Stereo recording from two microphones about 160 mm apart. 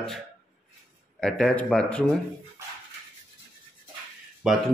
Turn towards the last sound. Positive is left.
turn(degrees=-5)  # may be behind; listen again after turning